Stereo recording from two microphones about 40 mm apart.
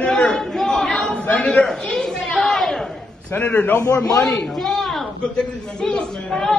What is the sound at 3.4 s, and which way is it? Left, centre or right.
Speech, left.